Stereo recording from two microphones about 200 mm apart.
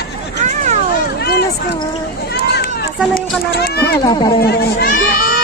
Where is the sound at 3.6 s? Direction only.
55° left (ahead or behind).